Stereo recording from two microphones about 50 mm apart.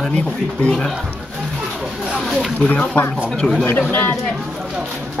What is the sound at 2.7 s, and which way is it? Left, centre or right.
Speech, left.